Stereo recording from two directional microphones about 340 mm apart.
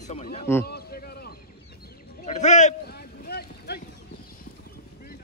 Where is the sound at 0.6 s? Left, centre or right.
Left.